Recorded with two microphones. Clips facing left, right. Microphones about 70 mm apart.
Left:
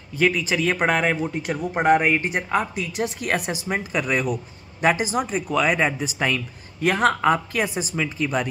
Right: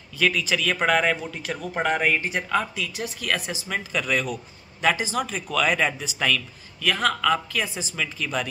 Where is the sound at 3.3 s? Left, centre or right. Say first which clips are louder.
Left 3 dB; left.